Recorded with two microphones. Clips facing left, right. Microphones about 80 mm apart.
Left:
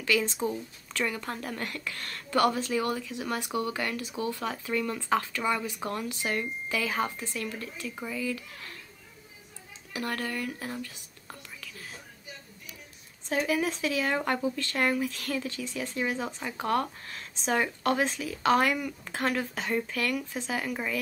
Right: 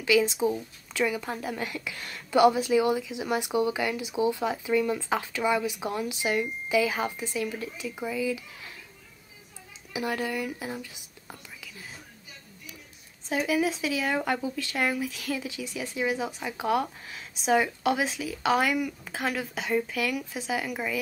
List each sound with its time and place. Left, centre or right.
0.0 s a woman's voice: centre
9.9 s speech: centre
13.3 s speech: centre